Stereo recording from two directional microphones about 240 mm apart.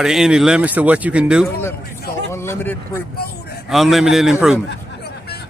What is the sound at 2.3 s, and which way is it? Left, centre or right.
Speech, centre.